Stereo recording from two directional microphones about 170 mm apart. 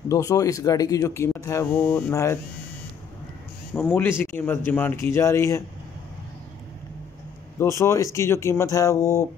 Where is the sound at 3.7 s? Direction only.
15° left (ahead or behind).